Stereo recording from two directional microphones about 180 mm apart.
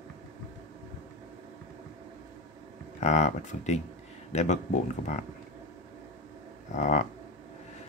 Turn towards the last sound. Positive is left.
turn(degrees=40)  # may be behind; listen again after turning